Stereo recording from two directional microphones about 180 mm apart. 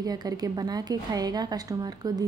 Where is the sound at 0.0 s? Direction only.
20° right (ahead or behind).